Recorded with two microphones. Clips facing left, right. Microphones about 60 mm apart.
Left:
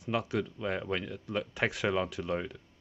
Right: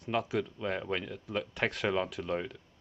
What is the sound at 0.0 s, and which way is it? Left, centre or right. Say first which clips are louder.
Speech: even; centre.